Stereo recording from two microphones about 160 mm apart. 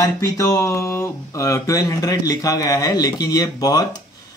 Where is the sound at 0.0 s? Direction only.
20° left (ahead or behind).